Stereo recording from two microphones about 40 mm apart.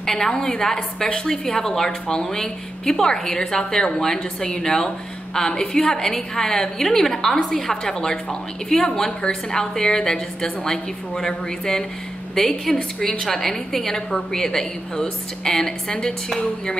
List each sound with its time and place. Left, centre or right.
0.0 s a woman's voice: centre